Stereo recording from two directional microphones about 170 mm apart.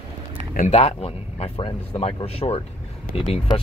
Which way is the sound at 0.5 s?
45° left (ahead or behind).